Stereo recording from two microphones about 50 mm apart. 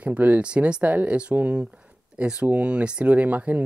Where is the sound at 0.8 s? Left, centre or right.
Right.